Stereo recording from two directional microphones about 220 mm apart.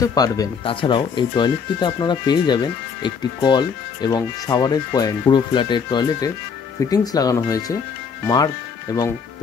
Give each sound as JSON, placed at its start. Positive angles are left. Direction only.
{"t": 0.0, "sound": "speech", "side_deg": 15}
{"t": 8.9, "sound": "speech", "side_deg": 15}